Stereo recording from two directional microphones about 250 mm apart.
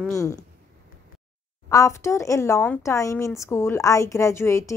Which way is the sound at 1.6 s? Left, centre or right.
Centre.